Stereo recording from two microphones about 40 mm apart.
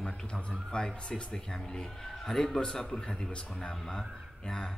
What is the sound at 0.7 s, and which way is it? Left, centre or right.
Speech, left.